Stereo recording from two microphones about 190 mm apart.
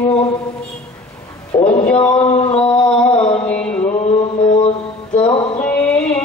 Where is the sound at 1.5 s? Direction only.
25° left (ahead or behind).